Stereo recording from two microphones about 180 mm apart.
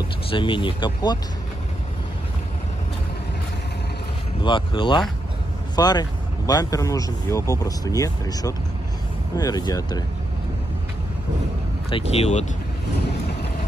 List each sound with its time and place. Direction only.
0.3 s speech: 25° left (ahead or behind)
4.4 s speech: 25° left (ahead or behind)
11.9 s speech: 35° left (ahead or behind)